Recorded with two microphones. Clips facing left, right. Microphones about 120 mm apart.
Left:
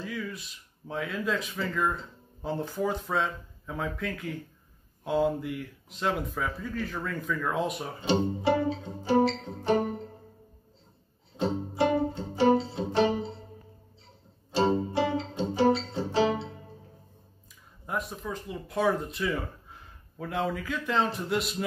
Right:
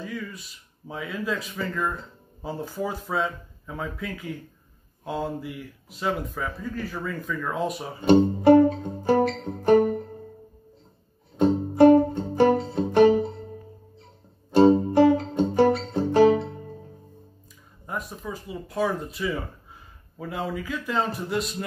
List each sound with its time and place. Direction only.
0.0 s speech: centre (ahead or behind)
8.1 s music: 50° right (ahead or behind)
11.3 s music: 50° right (ahead or behind)
14.5 s music: 50° right (ahead or behind)
17.8 s speech: centre (ahead or behind)